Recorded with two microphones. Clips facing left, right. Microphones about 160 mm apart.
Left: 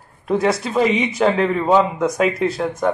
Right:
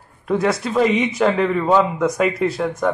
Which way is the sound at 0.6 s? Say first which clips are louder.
Right 1 dB; 5° left (ahead or behind).